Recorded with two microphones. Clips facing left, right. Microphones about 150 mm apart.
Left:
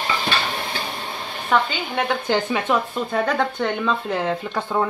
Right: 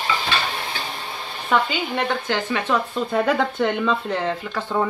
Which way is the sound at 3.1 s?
Centre (ahead or behind).